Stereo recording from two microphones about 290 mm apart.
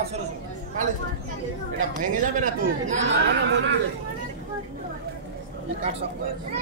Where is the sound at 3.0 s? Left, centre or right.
Right.